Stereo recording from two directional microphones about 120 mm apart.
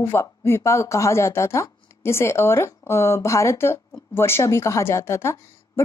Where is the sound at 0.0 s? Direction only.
20° left (ahead or behind).